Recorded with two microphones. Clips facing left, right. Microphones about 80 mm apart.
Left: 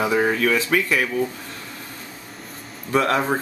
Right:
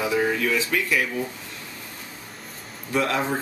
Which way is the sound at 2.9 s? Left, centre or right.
Left.